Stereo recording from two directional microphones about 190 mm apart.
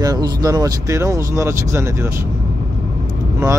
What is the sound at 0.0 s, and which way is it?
Speech, 20° right (ahead or behind).